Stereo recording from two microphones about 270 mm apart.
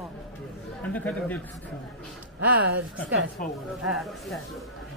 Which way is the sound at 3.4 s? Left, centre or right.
Left.